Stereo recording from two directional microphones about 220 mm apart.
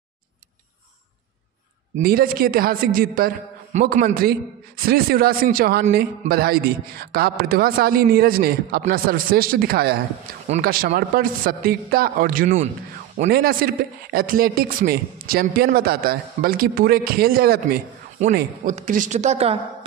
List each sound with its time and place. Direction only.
2.0 s a man's voice: 40° right (ahead or behind)